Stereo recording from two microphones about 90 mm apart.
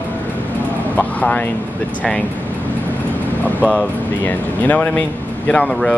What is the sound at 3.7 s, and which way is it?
Speech, 15° left (ahead or behind).